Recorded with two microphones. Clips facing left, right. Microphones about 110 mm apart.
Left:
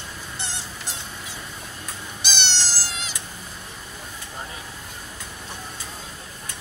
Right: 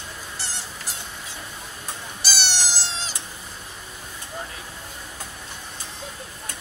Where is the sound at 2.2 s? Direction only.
5° right (ahead or behind); by 3.2 s 35° right (ahead or behind).